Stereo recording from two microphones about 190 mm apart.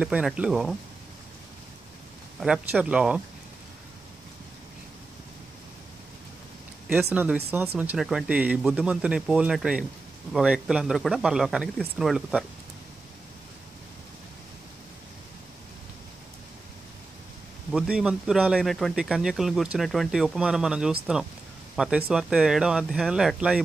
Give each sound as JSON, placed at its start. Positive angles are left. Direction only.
{"t": 0.0, "sound": "speech", "side_deg": -5}
{"t": 2.4, "sound": "speech", "side_deg": -5}
{"t": 7.1, "sound": "speech", "side_deg": -10}
{"t": 17.6, "sound": "speech", "side_deg": -5}